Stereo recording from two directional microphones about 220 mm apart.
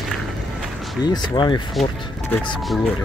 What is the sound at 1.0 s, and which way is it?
Speech, 20° left (ahead or behind).